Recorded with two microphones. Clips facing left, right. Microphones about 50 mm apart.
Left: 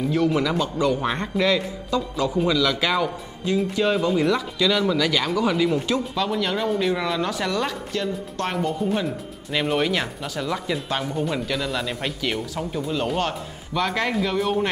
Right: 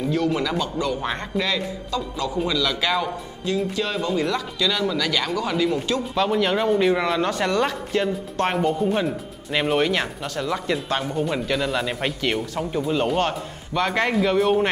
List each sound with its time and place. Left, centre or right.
0.1 s a man's voice: centre
6.1 s speech: centre
7.9 s speech: right